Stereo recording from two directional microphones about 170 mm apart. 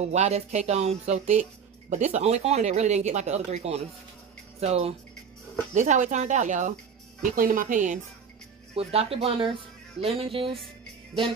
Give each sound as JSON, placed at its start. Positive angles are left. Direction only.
{"t": 0.0, "sound": "speech", "side_deg": -40}
{"t": 8.7, "sound": "speech", "side_deg": -35}